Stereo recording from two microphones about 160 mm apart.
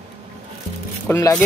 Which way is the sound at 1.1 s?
20° left (ahead or behind).